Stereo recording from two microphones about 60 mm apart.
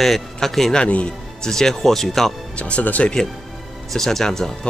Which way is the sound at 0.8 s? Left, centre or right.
Left.